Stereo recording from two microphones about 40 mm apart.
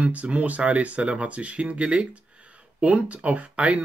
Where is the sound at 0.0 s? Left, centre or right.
Right.